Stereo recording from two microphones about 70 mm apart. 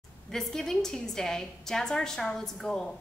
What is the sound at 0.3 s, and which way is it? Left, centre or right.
A woman's voice, centre.